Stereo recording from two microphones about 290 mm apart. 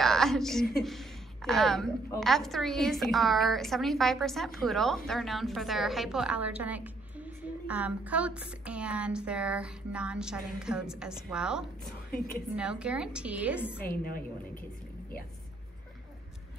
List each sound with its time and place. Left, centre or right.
0.0 s a sound: centre
0.7 s a woman's voice: centre
13.8 s a woman's voice: left